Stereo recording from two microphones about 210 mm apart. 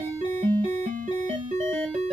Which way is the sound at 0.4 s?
40° right (ahead or behind).